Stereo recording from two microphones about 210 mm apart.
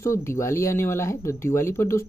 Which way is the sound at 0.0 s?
15° left (ahead or behind).